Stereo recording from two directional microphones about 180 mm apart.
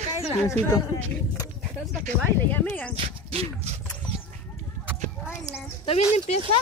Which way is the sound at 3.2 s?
30° right (ahead or behind).